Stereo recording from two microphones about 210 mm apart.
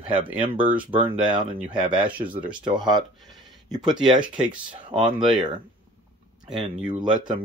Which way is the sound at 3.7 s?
20° right (ahead or behind).